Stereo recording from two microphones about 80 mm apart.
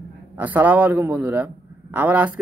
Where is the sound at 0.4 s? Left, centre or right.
Right.